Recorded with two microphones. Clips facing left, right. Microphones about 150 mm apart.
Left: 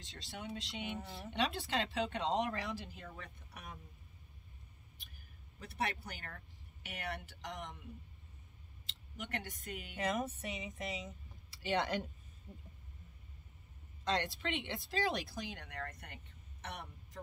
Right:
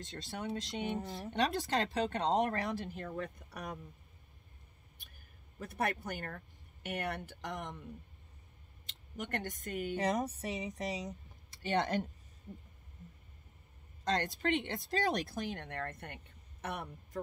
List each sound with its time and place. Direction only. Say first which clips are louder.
0.0 s speech: right 6 dB; 45° right (ahead or behind)
5.6 s speech: right 4 dB; 50° right (ahead or behind)
9.9 s speech: right 2 dB; 35° right (ahead or behind)
14.0 s speech: right 3 dB; 45° right (ahead or behind)